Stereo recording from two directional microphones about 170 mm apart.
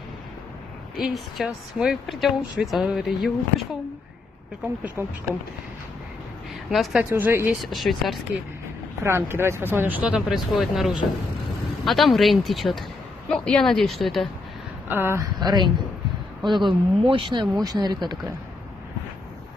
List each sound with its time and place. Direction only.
0.9 s speech: centre (ahead or behind)
6.7 s speech: centre (ahead or behind)
7.1 s speech: 15° right (ahead or behind)
7.6 s speech: centre (ahead or behind)
9.0 s speech: 15° right (ahead or behind)
14.9 s speech: 15° right (ahead or behind)